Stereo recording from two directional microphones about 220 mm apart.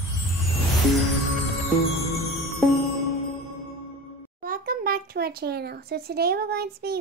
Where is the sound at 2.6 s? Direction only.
Centre (ahead or behind).